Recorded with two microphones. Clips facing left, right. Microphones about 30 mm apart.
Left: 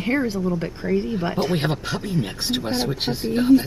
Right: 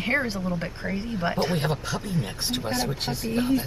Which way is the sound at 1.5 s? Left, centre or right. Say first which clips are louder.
Left 3 dB; left.